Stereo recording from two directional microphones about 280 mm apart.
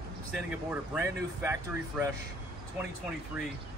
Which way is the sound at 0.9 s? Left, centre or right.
Centre.